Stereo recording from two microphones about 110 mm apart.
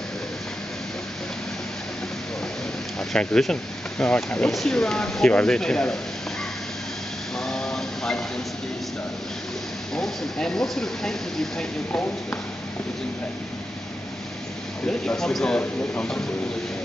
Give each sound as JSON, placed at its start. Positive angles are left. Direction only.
{"t": 3.1, "sound": "speech", "side_deg": 5}
{"t": 7.3, "sound": "a sound", "side_deg": 5}
{"t": 9.9, "sound": "speech", "side_deg": 5}
{"t": 11.9, "sound": "speech", "side_deg": 15}
{"t": 14.9, "sound": "speech", "side_deg": 5}